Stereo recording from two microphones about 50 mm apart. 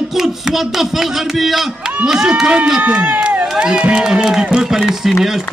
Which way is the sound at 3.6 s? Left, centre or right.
Centre.